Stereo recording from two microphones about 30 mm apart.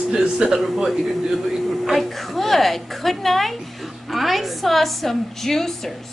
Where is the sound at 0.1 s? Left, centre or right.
Centre.